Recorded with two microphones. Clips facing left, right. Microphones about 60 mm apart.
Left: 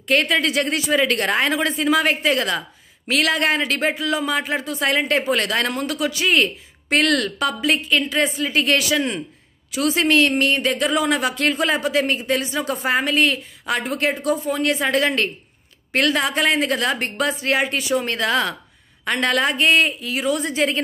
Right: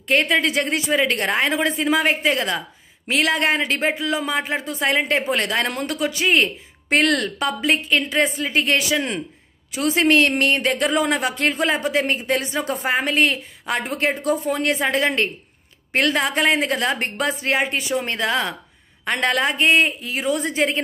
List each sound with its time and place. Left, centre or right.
0.1 s speech: right
14.8 s speech: right